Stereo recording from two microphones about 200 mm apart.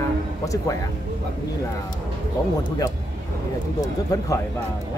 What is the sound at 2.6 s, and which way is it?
Speech, 20° left (ahead or behind).